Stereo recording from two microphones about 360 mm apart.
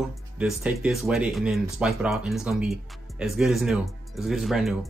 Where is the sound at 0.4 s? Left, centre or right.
Centre.